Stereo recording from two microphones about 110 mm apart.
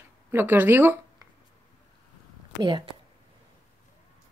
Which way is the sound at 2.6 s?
45° right (ahead or behind).